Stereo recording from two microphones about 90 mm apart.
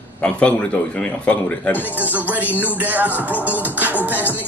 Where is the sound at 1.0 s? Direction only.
15° left (ahead or behind).